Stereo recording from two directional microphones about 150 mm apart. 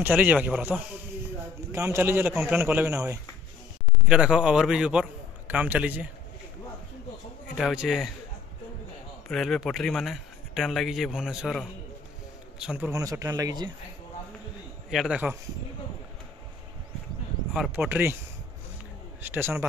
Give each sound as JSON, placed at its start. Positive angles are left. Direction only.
{"t": 0.0, "sound": "a man's voice", "side_deg": -10}
{"t": 4.1, "sound": "a man's voice", "side_deg": -5}
{"t": 7.5, "sound": "speech", "side_deg": -5}
{"t": 9.3, "sound": "a man's voice", "side_deg": 0}
{"t": 12.9, "sound": "speech", "side_deg": -20}
{"t": 14.9, "sound": "speech", "side_deg": -5}
{"t": 17.6, "sound": "a man's voice", "side_deg": -10}